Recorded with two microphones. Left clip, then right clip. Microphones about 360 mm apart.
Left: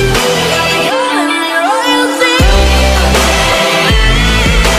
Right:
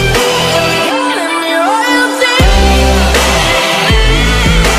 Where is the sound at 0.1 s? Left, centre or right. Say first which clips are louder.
Right 1 dB; centre.